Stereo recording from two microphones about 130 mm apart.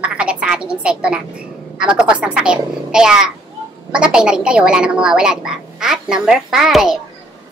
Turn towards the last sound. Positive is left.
turn(degrees=-5)  # may be behind; listen again after turning